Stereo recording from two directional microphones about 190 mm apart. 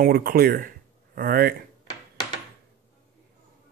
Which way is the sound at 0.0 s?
55° right (ahead or behind).